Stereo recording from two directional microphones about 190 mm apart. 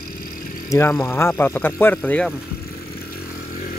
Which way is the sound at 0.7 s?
15° left (ahead or behind).